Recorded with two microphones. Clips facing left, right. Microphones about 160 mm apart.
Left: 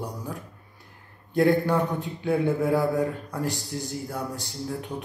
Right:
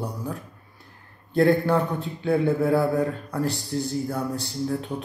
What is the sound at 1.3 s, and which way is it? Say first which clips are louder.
A man's voice: right 2 dB; 15° left (ahead or behind).